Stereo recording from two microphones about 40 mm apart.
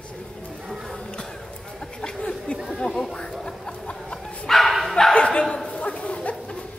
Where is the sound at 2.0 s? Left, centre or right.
Centre.